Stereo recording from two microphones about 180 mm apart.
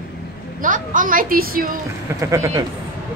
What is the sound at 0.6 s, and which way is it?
A woman's voice, 45° right (ahead or behind).